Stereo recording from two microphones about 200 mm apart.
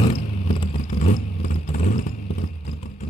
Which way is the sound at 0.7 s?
35° left (ahead or behind).